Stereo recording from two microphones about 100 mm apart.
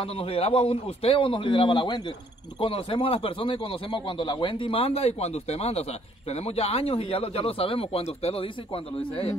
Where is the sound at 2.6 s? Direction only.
65° left (ahead or behind).